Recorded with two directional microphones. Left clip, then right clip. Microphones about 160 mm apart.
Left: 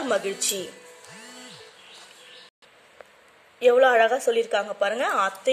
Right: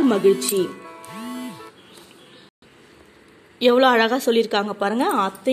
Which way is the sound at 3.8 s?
Centre (ahead or behind).